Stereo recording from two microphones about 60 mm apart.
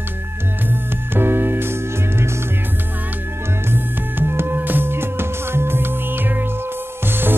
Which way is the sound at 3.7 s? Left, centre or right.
Right.